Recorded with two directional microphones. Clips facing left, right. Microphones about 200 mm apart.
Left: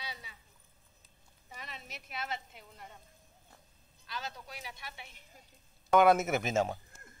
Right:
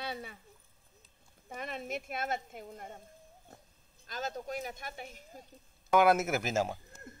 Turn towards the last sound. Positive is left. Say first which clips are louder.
# left 1 dB
turn(degrees=0)  # may be behind; listen again after turning